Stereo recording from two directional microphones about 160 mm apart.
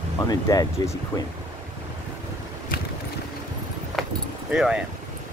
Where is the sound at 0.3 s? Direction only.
25° left (ahead or behind).